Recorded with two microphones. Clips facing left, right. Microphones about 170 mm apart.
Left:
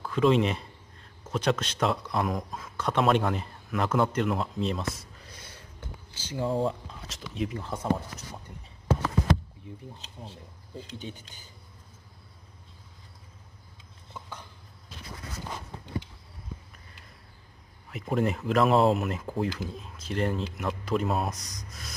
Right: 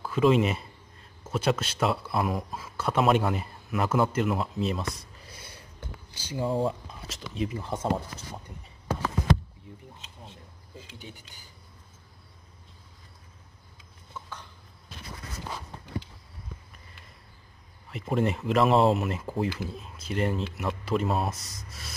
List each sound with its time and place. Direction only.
0.0 s speech: 5° right (ahead or behind)
7.6 s speech: 20° right (ahead or behind)
9.9 s speech: 35° left (ahead or behind)
11.0 s speech: 20° left (ahead or behind)
17.8 s speech: centre (ahead or behind)